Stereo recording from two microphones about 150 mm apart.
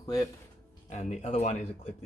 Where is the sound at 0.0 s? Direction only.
20° left (ahead or behind).